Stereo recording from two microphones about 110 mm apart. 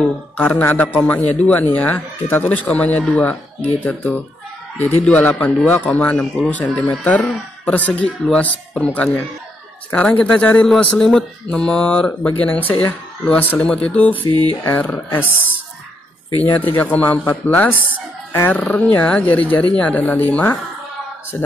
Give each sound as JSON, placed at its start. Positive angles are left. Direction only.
{"t": 0.0, "sound": "speech", "side_deg": 15}
{"t": 14.3, "sound": "speech", "side_deg": -40}
{"t": 14.6, "sound": "speech", "side_deg": 20}
{"t": 16.4, "sound": "speech", "side_deg": 15}